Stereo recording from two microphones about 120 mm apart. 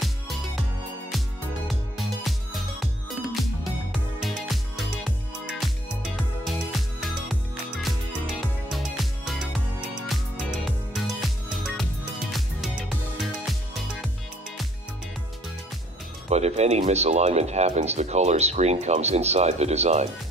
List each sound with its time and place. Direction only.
0.0 s music: centre (ahead or behind)
1.7 s music: centre (ahead or behind)
3.9 s music: centre (ahead or behind)
16.3 s speech: 65° right (ahead or behind)